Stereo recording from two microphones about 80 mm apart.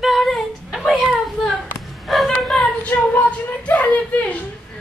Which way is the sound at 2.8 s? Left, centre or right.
Centre.